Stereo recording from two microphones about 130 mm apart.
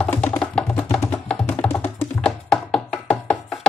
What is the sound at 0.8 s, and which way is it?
Music, 20° left (ahead or behind).